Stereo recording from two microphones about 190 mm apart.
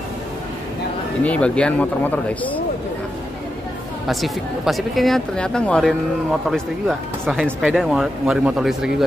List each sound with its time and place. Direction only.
1.2 s speech: 5° left (ahead or behind)
4.1 s speech: centre (ahead or behind)